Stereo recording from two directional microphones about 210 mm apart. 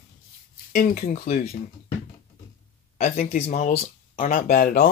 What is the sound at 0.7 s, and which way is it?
Speech, 35° left (ahead or behind).